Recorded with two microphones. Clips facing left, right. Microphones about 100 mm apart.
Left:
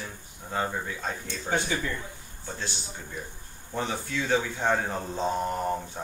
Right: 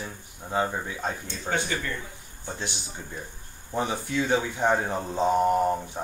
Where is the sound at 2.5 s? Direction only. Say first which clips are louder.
Right 1 dB; 20° right (ahead or behind).